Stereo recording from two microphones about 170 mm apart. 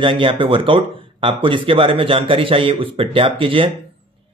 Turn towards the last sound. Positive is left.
turn(degrees=-30)  # may be behind; listen again after turning